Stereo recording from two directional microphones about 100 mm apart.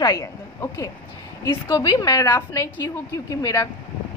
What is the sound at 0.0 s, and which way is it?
Speech, 35° left (ahead or behind).